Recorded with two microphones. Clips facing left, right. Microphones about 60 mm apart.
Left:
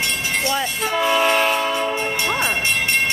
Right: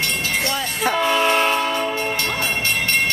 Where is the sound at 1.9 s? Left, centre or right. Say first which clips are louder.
Left 1 dB; centre.